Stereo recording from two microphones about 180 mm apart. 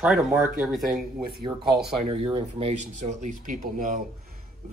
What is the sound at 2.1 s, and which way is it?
Speech, 30° right (ahead or behind).